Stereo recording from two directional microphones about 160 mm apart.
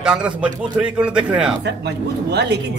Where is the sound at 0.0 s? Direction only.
5° right (ahead or behind).